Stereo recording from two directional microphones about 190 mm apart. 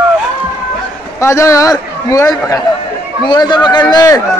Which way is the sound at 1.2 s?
15° left (ahead or behind).